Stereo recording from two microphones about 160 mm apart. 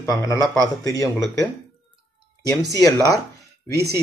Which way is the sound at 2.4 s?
90° right.